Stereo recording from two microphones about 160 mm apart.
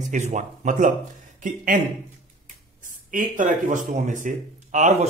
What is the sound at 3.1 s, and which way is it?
Speech, 55° right (ahead or behind).